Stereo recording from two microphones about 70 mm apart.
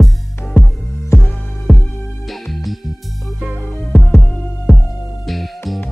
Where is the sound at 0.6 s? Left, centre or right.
Left.